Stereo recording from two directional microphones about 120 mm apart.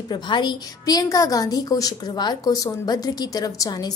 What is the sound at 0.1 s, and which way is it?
A woman's voice, 40° left (ahead or behind).